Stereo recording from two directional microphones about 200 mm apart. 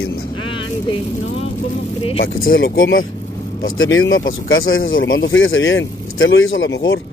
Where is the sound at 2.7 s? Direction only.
80° left.